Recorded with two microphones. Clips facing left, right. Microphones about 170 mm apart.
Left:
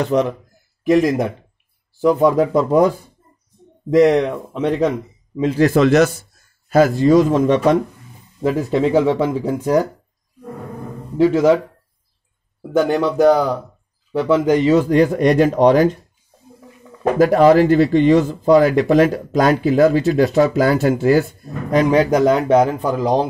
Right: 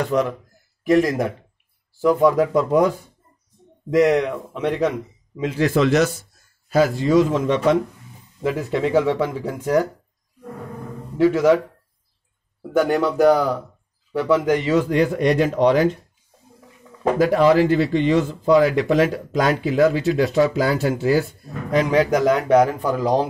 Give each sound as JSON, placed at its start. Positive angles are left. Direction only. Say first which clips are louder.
{"t": 0.0, "sound": "speech", "louder": "left 3 dB", "side_deg": 20}
{"t": 3.9, "sound": "a man's voice", "louder": "left 4 dB", "side_deg": 30}
{"t": 11.1, "sound": "speech", "louder": "left 2 dB", "side_deg": 30}
{"t": 12.7, "sound": "a man's voice", "louder": "left 2 dB", "side_deg": 20}
{"t": 17.0, "sound": "speech", "louder": "left 4 dB", "side_deg": 45}
{"t": 21.7, "sound": "speech", "louder": "left 3 dB", "side_deg": 35}